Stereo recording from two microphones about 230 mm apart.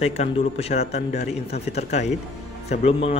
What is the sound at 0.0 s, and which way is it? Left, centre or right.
A man's voice, left.